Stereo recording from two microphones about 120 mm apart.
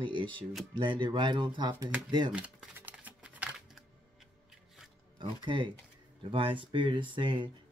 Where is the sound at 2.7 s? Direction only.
15° right (ahead or behind).